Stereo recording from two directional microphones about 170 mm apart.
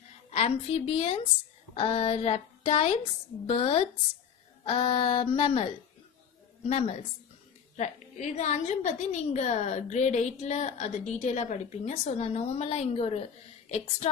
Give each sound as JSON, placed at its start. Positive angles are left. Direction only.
{"t": 0.3, "sound": "a woman's voice", "side_deg": 40}
{"t": 6.7, "sound": "a woman's voice", "side_deg": 40}